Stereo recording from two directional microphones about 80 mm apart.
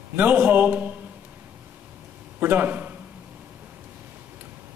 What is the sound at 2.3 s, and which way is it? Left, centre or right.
Speech, right.